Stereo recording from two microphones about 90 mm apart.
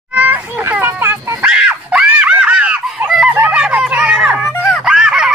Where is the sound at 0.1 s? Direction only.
20° right (ahead or behind).